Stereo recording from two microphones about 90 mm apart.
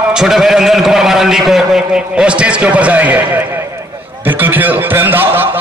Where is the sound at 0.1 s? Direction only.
5° right (ahead or behind).